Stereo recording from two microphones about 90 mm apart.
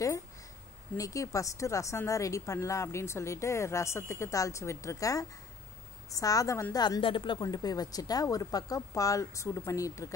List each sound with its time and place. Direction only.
0.9 s speech: 40° left (ahead or behind)
7.0 s speech: 65° left (ahead or behind)
7.4 s speech: 45° left (ahead or behind)